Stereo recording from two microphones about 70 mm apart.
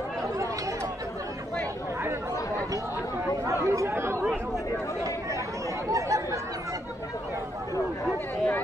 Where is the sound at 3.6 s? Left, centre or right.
Right.